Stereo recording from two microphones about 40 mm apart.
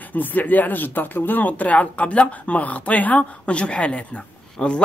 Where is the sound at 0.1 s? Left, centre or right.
Left.